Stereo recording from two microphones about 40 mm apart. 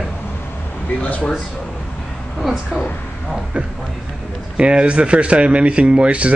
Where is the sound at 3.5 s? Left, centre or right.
Right.